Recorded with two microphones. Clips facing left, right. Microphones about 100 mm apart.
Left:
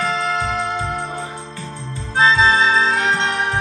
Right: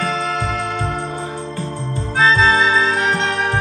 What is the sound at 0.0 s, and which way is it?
Music, 20° left (ahead or behind).